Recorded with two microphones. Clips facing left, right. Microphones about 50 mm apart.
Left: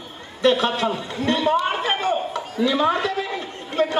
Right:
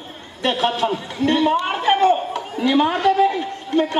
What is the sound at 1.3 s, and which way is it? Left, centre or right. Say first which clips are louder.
Speech: right 2 dB; right.